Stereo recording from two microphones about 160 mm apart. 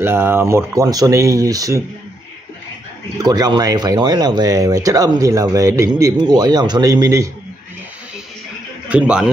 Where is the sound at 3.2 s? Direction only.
25° right (ahead or behind).